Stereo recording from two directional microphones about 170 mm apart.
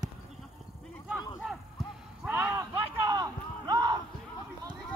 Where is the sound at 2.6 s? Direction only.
20° right (ahead or behind).